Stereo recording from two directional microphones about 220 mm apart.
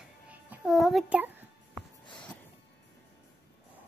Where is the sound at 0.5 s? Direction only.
Centre (ahead or behind).